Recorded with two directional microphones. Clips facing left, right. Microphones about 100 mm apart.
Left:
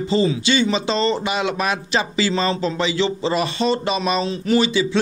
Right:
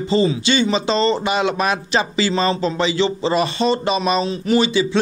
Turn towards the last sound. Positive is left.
turn(degrees=-30)  # may be behind; listen again after turning